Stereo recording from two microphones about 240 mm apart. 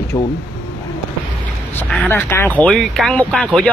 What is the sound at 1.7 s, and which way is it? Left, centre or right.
Speech, centre.